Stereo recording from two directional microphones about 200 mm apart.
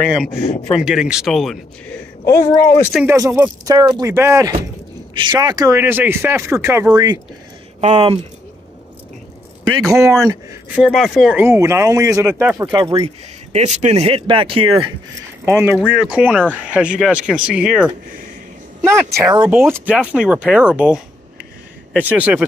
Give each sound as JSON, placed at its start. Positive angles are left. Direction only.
{"t": 0.7, "sound": "speech", "side_deg": -5}
{"t": 2.2, "sound": "speech", "side_deg": 15}
{"t": 2.9, "sound": "speech", "side_deg": -5}
{"t": 3.6, "sound": "speech", "side_deg": -20}
{"t": 7.8, "sound": "speech", "side_deg": -30}
{"t": 9.7, "sound": "speech", "side_deg": -15}
{"t": 10.8, "sound": "speech", "side_deg": 0}
{"t": 12.7, "sound": "speech", "side_deg": -25}
{"t": 13.5, "sound": "speech", "side_deg": -35}
{"t": 15.4, "sound": "speech", "side_deg": -10}
{"t": 19.5, "sound": "speech", "side_deg": -10}